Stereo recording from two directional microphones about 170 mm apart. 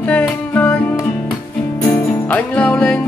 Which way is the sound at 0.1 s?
10° left (ahead or behind).